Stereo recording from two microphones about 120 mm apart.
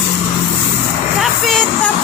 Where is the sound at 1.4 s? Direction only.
5° left (ahead or behind).